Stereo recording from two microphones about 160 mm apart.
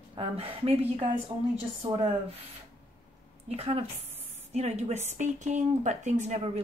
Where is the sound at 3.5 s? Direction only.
35° right (ahead or behind).